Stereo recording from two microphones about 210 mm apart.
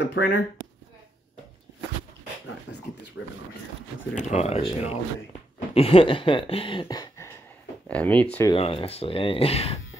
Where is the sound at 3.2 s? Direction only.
70° left (ahead or behind).